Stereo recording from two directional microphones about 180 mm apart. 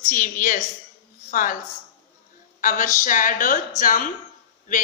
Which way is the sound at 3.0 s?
45° left (ahead or behind).